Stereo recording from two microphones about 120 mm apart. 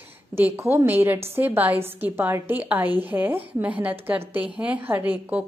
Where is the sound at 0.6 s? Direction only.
20° right (ahead or behind).